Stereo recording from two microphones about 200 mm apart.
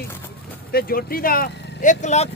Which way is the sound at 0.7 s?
50° left (ahead or behind).